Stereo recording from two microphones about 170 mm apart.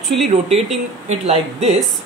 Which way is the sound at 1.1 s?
40° right (ahead or behind).